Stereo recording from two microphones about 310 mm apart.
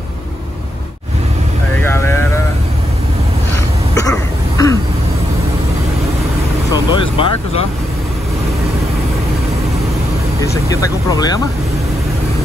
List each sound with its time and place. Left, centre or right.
1.8 s vehicle: centre
3.9 s throat clearing: centre
6.7 s vehicle: centre
10.4 s speech: centre